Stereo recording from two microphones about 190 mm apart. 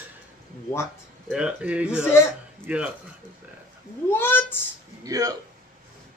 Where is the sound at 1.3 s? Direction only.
5° right (ahead or behind).